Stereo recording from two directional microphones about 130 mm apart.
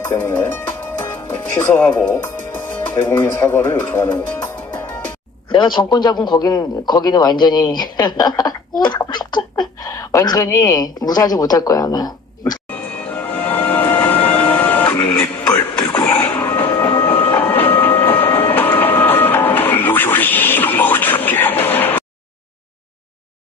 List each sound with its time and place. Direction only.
0.2 s speech: 15° left (ahead or behind)
1.0 s music: 15° left (ahead or behind)
5.5 s speech: 35° left (ahead or behind)
12.6 s music: 10° left (ahead or behind)
15.5 s television: 15° left (ahead or behind)